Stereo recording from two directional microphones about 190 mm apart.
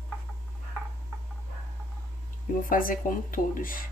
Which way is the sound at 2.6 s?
45° left (ahead or behind).